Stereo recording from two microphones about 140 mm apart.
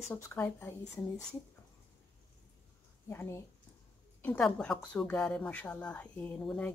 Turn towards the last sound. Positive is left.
turn(degrees=10)  # may be behind; listen again after turning